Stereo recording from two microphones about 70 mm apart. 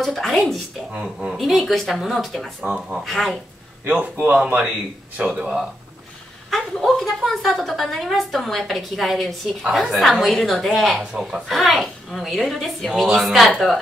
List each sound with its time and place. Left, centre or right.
0.0 s a woman's voice: centre
2.6 s speech: centre
3.0 s a woman's voice: centre
3.8 s speech: right
6.5 s a woman's voice: centre